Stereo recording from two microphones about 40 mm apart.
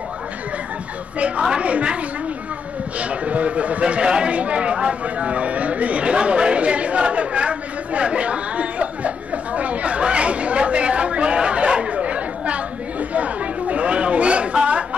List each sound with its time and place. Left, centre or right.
1.6 s a man's voice: right
3.0 s a man's voice: right
4.0 s speech: right
4.3 s a sound: right
13.1 s chatter: right